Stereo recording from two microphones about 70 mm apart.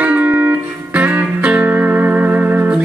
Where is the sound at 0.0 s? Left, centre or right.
Right.